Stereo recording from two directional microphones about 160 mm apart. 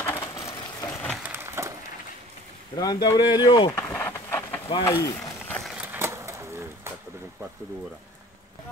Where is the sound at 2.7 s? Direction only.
25° left (ahead or behind).